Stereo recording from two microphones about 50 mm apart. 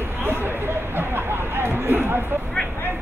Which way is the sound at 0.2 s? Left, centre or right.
Right.